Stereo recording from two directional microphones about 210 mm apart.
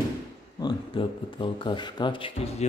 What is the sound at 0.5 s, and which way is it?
Speech, 20° left (ahead or behind).